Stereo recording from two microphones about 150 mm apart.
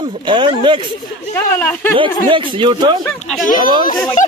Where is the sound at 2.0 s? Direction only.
35° right (ahead or behind).